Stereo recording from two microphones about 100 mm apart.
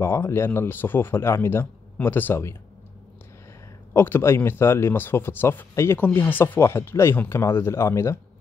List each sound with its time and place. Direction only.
0.0 s speech: 25° left (ahead or behind)
3.9 s speech: 25° left (ahead or behind)